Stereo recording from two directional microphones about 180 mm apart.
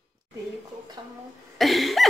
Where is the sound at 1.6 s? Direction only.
Centre (ahead or behind).